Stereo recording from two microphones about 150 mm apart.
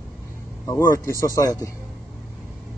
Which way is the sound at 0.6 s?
20° left (ahead or behind).